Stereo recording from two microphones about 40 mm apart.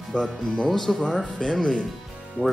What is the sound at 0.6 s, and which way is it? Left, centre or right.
Speech, centre.